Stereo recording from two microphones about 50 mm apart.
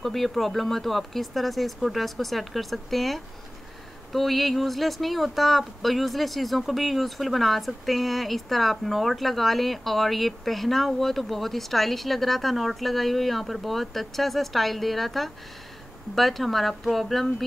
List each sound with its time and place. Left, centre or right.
0.0 s speech: centre